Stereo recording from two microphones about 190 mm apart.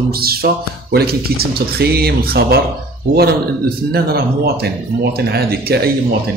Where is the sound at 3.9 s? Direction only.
55° right (ahead or behind).